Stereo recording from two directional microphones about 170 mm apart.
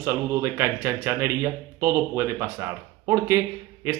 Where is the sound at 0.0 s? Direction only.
20° right (ahead or behind).